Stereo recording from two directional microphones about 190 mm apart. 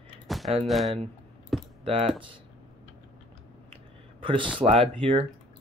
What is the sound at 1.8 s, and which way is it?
Speech, 30° right (ahead or behind).